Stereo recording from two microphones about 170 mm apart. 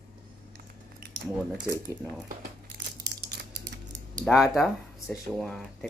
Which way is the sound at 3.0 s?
75° right (ahead or behind).